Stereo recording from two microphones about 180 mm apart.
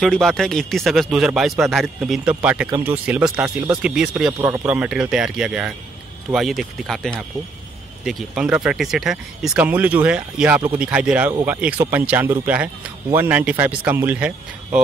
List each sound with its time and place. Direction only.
0.0 s speech: centre (ahead or behind)
4.3 s speech: 15° right (ahead or behind)
4.6 s speech: 5° right (ahead or behind)